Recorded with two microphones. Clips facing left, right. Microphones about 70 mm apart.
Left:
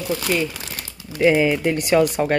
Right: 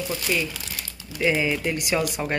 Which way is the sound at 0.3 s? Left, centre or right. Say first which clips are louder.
Left 4 dB; left.